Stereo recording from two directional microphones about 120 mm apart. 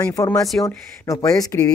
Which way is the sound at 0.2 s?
30° left (ahead or behind).